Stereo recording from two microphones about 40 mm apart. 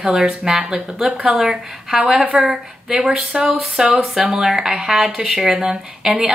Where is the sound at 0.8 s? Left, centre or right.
Centre.